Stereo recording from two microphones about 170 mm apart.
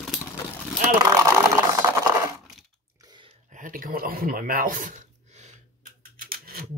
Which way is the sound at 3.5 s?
50° right (ahead or behind).